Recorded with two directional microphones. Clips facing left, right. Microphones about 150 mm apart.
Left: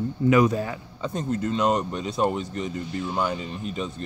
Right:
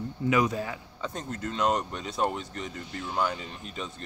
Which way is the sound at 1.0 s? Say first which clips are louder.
Left 9 dB; 5° left (ahead or behind).